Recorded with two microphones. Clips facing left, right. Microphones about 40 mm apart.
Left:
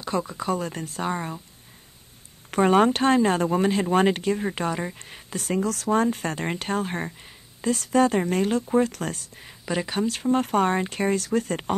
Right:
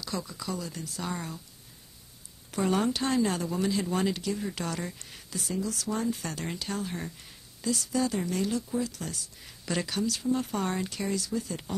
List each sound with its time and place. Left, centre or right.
0.0 s speech: left
2.5 s speech: left
4.6 s speech: left
9.5 s a woman's voice: left
9.9 s speech: left
10.2 s speech: left